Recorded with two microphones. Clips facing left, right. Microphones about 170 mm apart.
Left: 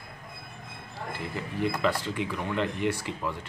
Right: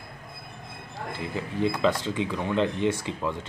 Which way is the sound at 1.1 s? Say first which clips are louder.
Right 3 dB; 20° right (ahead or behind).